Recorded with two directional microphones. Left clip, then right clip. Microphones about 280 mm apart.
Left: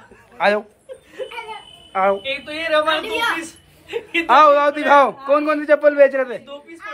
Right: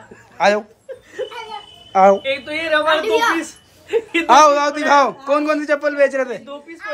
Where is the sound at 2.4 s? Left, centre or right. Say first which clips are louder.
Right 1 dB; right.